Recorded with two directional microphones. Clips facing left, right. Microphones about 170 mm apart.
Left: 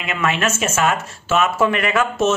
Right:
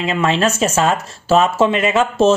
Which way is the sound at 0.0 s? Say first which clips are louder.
Right 5 dB; 30° right (ahead or behind).